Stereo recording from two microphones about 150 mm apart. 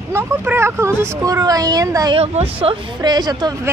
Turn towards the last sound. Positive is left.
turn(degrees=-25)  # may be behind; listen again after turning